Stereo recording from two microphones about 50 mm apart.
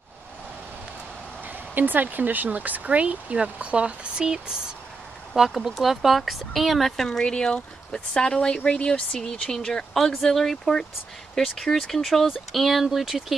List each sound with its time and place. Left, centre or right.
1.8 s speech: right
5.3 s speech: centre
7.1 s speech: centre